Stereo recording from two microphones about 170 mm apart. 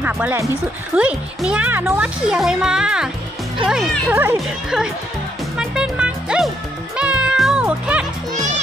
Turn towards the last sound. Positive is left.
turn(degrees=-5)  # may be behind; listen again after turning